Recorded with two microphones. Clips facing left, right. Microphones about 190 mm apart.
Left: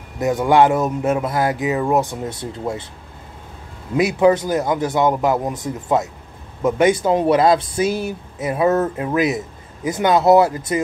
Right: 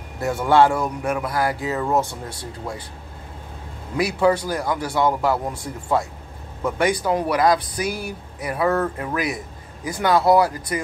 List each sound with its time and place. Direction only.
0.2 s speech: 15° left (ahead or behind)
3.9 s speech: 20° left (ahead or behind)